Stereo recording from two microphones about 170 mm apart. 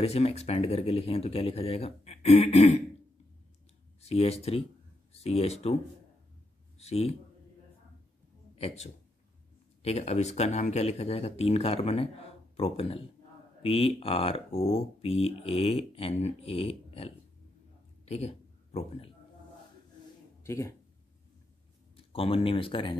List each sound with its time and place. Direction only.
0.0 s speech: 35° left (ahead or behind)
4.0 s speech: 35° left (ahead or behind)
6.8 s speech: 40° left (ahead or behind)
8.5 s speech: 40° left (ahead or behind)
18.0 s a sound: 40° left (ahead or behind)
20.4 s speech: 15° left (ahead or behind)
21.9 s speech: 35° left (ahead or behind)